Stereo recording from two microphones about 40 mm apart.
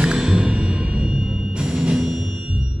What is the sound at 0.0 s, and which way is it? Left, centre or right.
Music, right.